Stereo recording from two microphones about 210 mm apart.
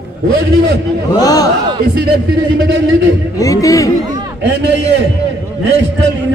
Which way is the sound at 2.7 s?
60° right (ahead or behind).